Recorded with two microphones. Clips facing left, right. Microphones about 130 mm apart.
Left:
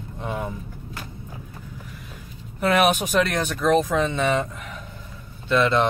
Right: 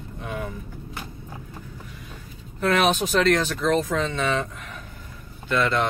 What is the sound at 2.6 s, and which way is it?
Speech, 10° left (ahead or behind).